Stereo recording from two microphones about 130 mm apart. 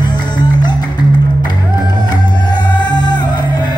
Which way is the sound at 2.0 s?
35° left (ahead or behind).